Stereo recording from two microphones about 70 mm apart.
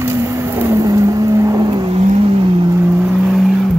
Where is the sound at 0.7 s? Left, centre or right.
Right.